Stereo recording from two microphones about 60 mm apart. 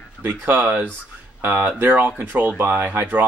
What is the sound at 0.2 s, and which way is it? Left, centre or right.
Speech, right.